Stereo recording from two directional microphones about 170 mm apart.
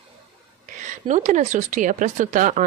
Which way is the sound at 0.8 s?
45° right (ahead or behind).